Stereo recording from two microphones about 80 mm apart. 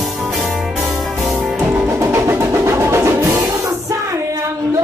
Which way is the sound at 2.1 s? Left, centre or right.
Right.